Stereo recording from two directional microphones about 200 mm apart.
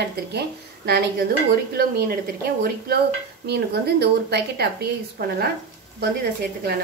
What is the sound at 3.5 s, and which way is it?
A woman's voice, 55° right (ahead or behind).